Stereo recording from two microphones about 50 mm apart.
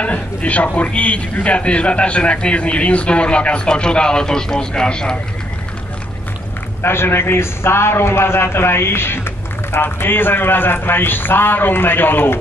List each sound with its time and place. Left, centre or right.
0.0 s a man's voice: left
6.8 s a man's voice: left